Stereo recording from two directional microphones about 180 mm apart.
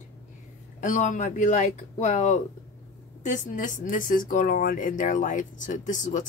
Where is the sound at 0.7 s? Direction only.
45° left (ahead or behind).